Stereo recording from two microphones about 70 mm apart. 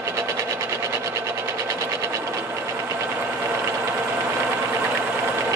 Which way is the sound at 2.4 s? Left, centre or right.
Right.